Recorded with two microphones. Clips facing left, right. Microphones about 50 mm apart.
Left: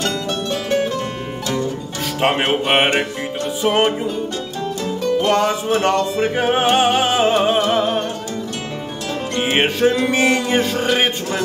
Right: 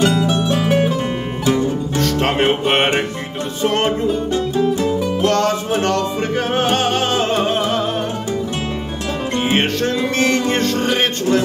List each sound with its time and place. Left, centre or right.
0.0 s music: centre
2.0 s music: centre
4.1 s music: centre
5.2 s music: centre
9.4 s music: centre